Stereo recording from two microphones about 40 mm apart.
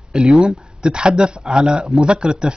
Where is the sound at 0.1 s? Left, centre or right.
Centre.